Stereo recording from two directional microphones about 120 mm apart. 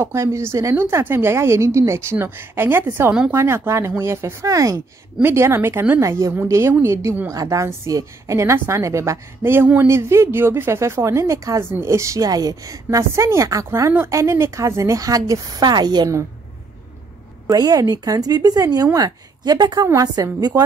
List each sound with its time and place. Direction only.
0.0 s speech: 20° right (ahead or behind)
17.5 s speech: 30° right (ahead or behind)